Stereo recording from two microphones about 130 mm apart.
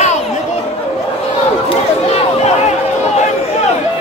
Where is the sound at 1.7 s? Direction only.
50° left (ahead or behind).